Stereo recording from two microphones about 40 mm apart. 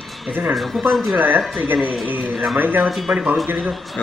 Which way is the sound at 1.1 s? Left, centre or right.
Right.